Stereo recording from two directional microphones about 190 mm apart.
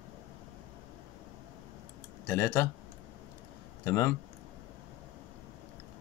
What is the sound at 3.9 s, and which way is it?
Speech, 15° left (ahead or behind).